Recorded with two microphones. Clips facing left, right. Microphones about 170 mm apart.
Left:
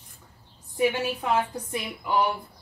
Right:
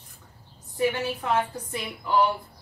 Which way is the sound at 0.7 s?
15° left (ahead or behind).